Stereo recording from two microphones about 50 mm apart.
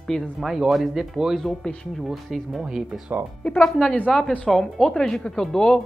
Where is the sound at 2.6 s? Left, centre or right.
Centre.